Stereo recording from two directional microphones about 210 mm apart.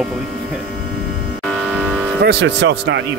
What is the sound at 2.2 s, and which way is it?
Speech, 55° right (ahead or behind).